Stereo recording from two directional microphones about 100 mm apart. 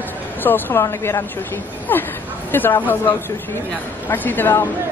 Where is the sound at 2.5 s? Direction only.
20° left (ahead or behind).